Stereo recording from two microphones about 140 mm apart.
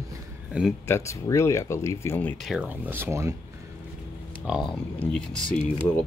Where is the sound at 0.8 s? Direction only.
20° left (ahead or behind).